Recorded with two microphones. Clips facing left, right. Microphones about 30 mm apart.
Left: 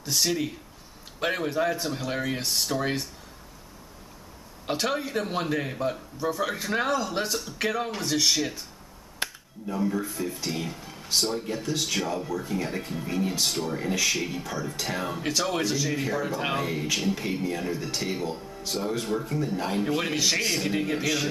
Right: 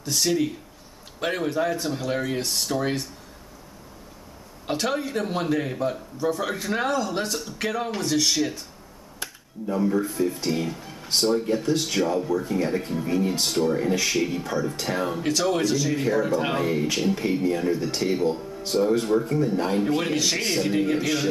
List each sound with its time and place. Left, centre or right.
0.0 s speech: centre
4.6 s speech: centre
9.2 s finger snapping: left
9.7 s speech: centre